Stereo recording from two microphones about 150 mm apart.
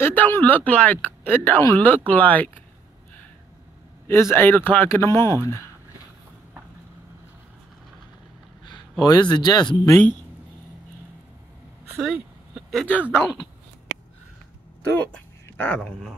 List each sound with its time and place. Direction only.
0.0 s speech: 15° left (ahead or behind)
4.1 s speech: 15° left (ahead or behind)
9.0 s speech: 30° left (ahead or behind)
12.0 s a sound: centre (ahead or behind)
14.9 s speech: 10° left (ahead or behind)